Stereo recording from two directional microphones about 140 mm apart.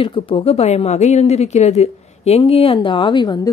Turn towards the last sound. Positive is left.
turn(degrees=35)  # may be behind; listen again after turning